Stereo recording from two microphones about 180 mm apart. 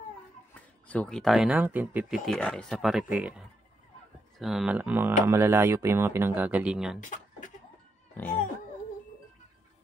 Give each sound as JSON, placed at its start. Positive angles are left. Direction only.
{"t": 0.6, "sound": "speech", "side_deg": 5}
{"t": 7.0, "sound": "a sound", "side_deg": 45}
{"t": 8.2, "sound": "speech", "side_deg": 10}